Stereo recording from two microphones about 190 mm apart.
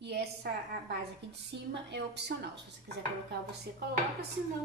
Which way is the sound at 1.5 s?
65° right (ahead or behind).